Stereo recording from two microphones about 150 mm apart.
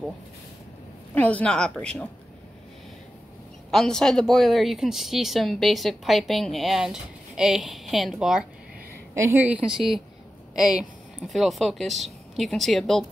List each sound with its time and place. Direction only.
1.1 s a woman's voice: 10° left (ahead or behind)
3.7 s speech: 5° left (ahead or behind)
9.1 s a woman's voice: 15° right (ahead or behind)
9.8 s speech: centre (ahead or behind)